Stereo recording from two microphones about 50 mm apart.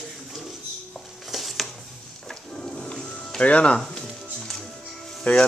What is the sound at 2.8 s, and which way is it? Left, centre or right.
Music, centre.